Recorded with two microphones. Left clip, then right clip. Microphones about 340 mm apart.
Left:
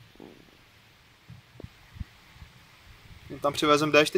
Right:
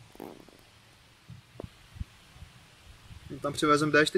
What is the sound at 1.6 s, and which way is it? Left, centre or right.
Heart sounds, right.